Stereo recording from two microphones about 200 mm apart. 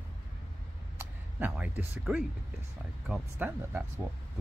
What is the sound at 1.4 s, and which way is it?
Speech, 10° right (ahead or behind).